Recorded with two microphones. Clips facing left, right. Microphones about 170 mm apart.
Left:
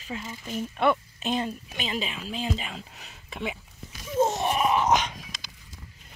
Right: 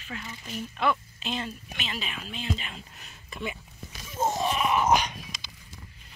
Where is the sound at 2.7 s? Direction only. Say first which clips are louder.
Left 4 dB; 90° left.